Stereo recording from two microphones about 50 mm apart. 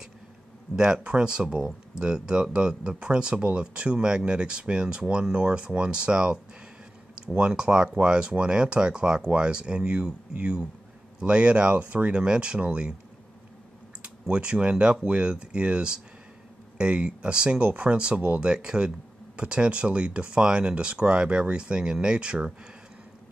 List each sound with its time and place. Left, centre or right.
0.7 s speech: centre
14.0 s speech: right